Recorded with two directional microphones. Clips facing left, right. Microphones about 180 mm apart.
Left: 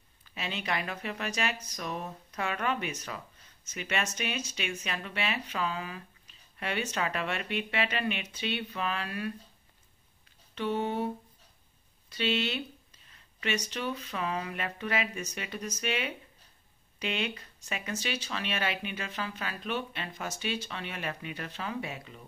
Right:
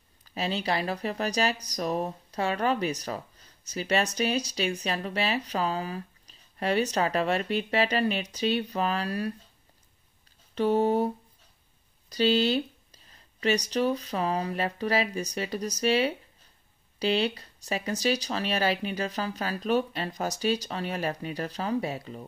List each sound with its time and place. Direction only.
0.3 s speech: 35° right (ahead or behind)
10.5 s a sound: 40° right (ahead or behind)
12.1 s speech: 35° right (ahead or behind)